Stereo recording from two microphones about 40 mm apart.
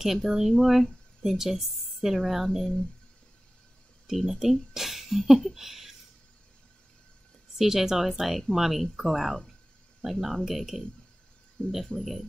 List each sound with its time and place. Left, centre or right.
0.0 s a woman's voice: centre
4.1 s speech: centre
7.5 s a woman's voice: centre
11.6 s speech: left
12.0 s a woman's voice: centre